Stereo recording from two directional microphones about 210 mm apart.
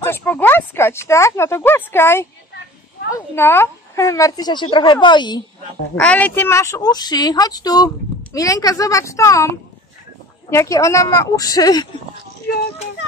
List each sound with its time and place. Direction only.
0.0 s speech: 10° left (ahead or behind)
3.3 s a woman's voice: 10° left (ahead or behind)
5.9 s speech: 5° left (ahead or behind)